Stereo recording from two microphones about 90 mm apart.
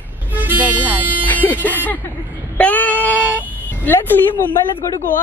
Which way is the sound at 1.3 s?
20° left (ahead or behind).